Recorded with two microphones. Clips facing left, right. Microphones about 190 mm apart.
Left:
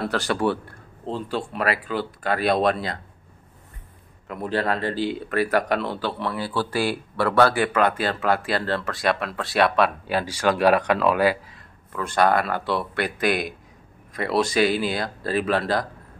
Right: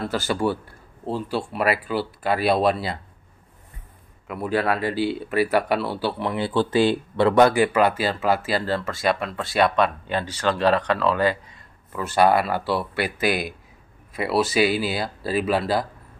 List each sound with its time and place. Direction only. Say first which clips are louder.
0.0 s speech: even; centre (ahead or behind)
4.3 s speech: right 2 dB; 10° right (ahead or behind)
6.3 s speech: right 5 dB; 20° right (ahead or behind); by 11.6 s 10° left (ahead or behind)
11.9 s speech: right 2 dB; 5° right (ahead or behind)